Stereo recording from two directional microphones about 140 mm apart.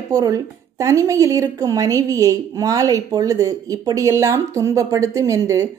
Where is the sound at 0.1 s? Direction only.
25° right (ahead or behind).